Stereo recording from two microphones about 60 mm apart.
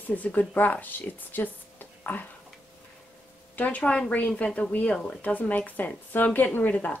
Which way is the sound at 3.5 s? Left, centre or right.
Left.